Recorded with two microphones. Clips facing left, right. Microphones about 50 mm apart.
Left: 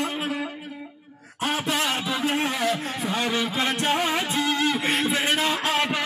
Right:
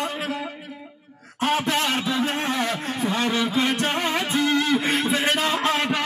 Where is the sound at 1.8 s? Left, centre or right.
Left.